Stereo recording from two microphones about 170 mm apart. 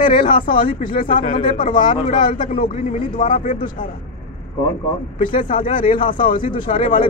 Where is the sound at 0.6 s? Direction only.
50° left (ahead or behind).